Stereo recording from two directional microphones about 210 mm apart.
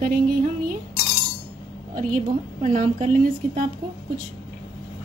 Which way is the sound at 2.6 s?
35° right (ahead or behind).